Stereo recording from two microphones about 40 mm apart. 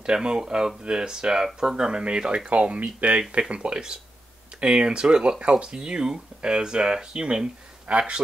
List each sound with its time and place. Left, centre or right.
0.0 s speech: right
2.5 s speech: right